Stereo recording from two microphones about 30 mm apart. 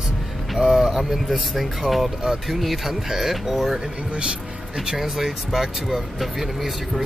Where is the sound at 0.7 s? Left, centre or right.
Centre.